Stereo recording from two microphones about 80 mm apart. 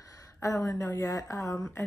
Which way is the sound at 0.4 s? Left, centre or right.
Left.